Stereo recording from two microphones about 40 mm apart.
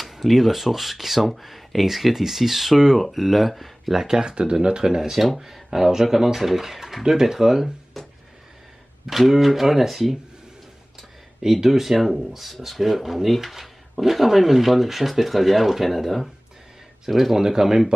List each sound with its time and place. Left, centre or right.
0.1 s speech: centre
4.2 s speech: right
9.0 s speech: centre
11.4 s speech: centre